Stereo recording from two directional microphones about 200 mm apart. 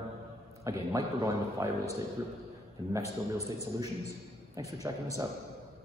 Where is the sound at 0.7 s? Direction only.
15° right (ahead or behind).